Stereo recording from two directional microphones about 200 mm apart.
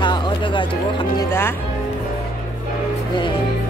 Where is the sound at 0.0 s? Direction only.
20° left (ahead or behind).